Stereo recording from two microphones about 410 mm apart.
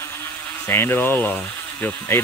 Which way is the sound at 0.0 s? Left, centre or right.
Centre.